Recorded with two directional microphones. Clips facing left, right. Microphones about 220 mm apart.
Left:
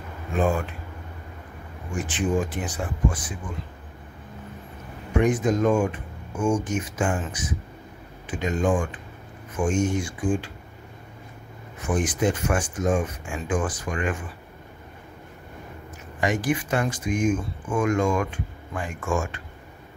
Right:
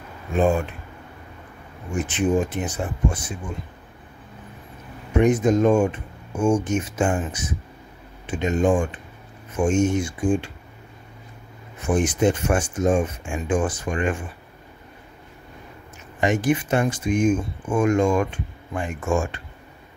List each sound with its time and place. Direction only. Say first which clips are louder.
2.0 s speech: right 3 dB; 20° right (ahead or behind)
5.1 s speech: right 4 dB; 25° right (ahead or behind)
11.9 s speech: right 4 dB; 25° right (ahead or behind)
16.2 s speech: right 4 dB; 25° right (ahead or behind)